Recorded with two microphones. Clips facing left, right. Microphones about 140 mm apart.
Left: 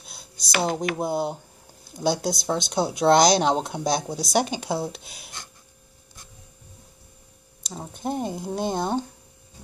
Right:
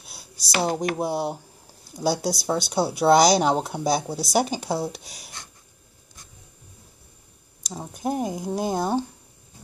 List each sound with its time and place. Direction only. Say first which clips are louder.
0.0 s a sound: even; 10° right (ahead or behind)
0.4 s speech: right 1 dB; 35° right (ahead or behind)
0.9 s speech: even; 5° right (ahead or behind)
4.9 s speech: right 1 dB; 35° right (ahead or behind)
7.7 s speech: right 2 dB; 5° right (ahead or behind)